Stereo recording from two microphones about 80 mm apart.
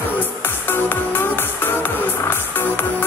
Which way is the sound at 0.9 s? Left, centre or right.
Left.